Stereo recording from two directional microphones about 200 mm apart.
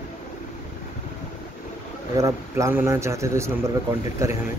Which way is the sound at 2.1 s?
15° right (ahead or behind).